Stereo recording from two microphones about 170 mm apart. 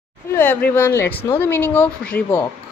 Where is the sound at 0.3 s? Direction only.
10° left (ahead or behind).